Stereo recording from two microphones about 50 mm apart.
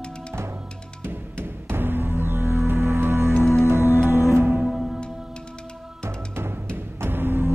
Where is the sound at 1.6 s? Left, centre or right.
Right.